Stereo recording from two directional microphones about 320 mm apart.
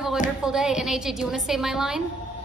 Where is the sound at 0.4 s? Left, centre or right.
Centre.